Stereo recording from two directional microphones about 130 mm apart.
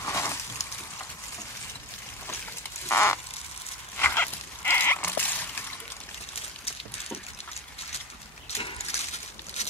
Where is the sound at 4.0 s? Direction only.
15° left (ahead or behind).